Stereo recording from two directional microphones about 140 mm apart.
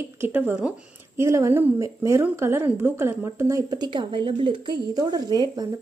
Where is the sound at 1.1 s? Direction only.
20° right (ahead or behind).